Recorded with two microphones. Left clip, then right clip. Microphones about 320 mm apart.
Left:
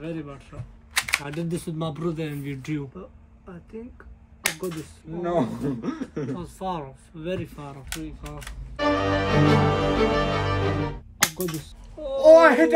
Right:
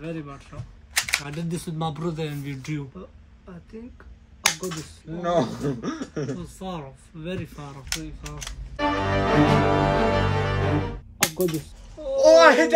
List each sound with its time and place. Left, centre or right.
0.0 s speech: centre
5.1 s speech: centre
6.4 s speech: centre
7.9 s speech: centre
8.7 s music: centre
12.2 s a sound: centre